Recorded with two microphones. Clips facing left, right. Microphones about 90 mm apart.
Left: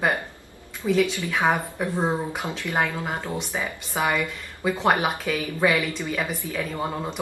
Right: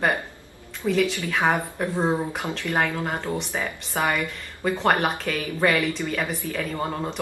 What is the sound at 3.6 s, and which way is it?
A woman's voice, 15° left (ahead or behind).